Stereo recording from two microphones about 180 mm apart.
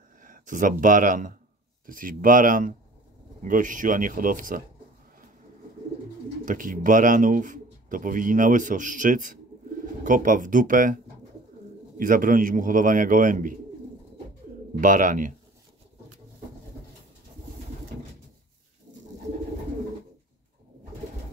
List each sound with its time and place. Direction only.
0.2 s speech: 45° right (ahead or behind)
6.4 s speech: 45° right (ahead or behind)
12.0 s speech: 50° right (ahead or behind)
14.8 s speech: 45° right (ahead or behind)